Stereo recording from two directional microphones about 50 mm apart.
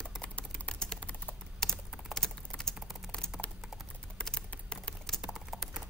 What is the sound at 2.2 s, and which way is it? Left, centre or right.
Typing, centre.